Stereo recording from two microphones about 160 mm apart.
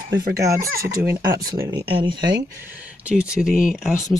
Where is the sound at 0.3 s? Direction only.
20° right (ahead or behind).